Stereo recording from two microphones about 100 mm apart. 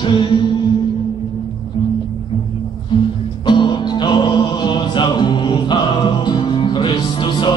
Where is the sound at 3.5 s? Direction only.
55° left (ahead or behind).